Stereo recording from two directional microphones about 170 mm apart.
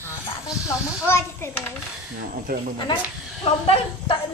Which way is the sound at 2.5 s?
55° right (ahead or behind).